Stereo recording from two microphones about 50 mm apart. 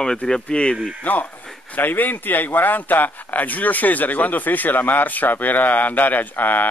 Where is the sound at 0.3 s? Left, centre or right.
Centre.